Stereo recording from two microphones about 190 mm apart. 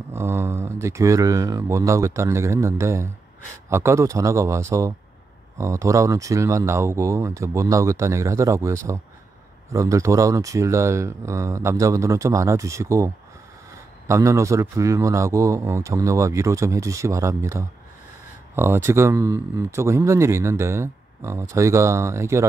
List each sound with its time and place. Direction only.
0.1 s a man's voice: 15° right (ahead or behind)